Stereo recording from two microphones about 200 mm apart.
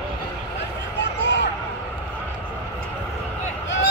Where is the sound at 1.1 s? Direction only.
60° left (ahead or behind).